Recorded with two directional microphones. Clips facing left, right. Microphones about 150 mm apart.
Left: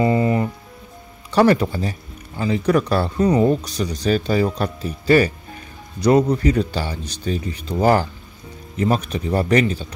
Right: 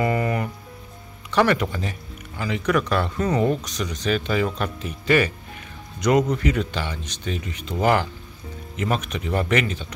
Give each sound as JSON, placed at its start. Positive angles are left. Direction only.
{"t": 0.0, "sound": "music", "side_deg": 25}
{"t": 1.3, "sound": "speech", "side_deg": 35}